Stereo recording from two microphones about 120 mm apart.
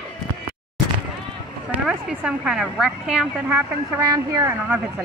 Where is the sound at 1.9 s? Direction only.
5° right (ahead or behind).